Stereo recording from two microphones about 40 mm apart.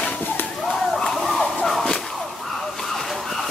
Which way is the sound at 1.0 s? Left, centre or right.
Centre.